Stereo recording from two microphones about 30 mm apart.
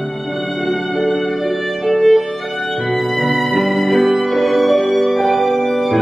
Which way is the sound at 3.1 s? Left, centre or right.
Centre.